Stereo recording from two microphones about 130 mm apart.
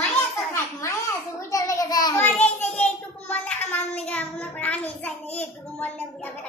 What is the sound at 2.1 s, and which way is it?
Child singing, 10° left (ahead or behind).